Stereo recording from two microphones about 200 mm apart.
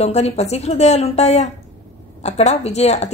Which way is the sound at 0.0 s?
35° left (ahead or behind).